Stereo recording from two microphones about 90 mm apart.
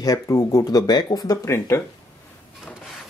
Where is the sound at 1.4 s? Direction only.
30° left (ahead or behind).